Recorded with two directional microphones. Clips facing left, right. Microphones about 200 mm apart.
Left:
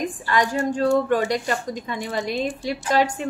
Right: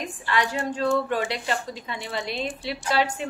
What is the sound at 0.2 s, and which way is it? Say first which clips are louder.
A woman's voice: left 3 dB; 45° left (ahead or behind).